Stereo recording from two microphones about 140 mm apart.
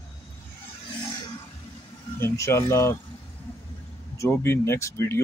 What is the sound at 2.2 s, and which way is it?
Speech, 20° left (ahead or behind).